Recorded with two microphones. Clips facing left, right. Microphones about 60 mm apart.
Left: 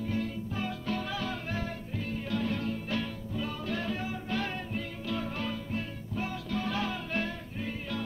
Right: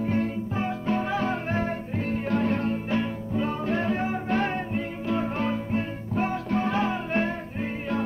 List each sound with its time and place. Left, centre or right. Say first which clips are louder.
0.0 s music: right 7 dB; right